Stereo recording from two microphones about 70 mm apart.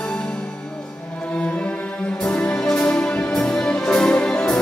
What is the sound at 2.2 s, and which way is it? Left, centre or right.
Music, centre.